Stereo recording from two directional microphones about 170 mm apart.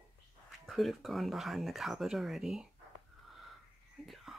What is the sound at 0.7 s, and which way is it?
Speech, centre (ahead or behind).